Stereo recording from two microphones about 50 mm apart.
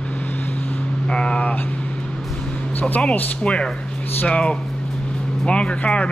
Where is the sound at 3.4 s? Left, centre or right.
Left.